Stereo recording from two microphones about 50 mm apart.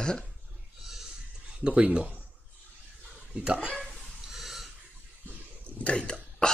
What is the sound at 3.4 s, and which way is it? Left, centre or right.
Speech, right.